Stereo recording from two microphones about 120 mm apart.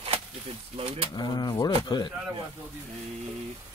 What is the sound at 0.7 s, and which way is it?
Speech, 55° right (ahead or behind).